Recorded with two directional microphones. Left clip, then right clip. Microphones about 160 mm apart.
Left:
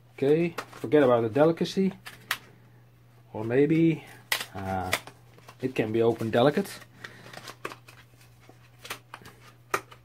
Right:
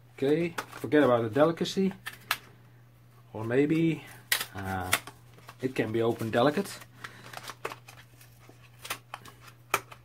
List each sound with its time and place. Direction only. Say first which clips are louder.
0.1 s speech: left 3 dB; 25° left (ahead or behind)
3.3 s a sound: left 3 dB; 20° left (ahead or behind)
4.8 s shuffling cards: even; 5° left (ahead or behind)
5.6 s speech: left 3 dB; 25° left (ahead or behind)